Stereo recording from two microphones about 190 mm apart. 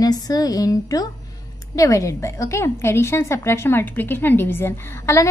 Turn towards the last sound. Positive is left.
turn(degrees=15)  # may be behind; listen again after turning